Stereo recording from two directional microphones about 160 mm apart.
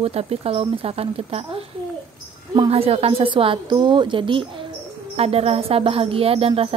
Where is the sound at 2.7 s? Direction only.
40° right (ahead or behind).